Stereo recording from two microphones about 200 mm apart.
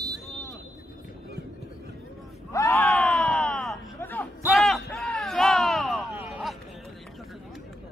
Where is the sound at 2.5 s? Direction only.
15° left (ahead or behind); by 6.6 s 5° right (ahead or behind).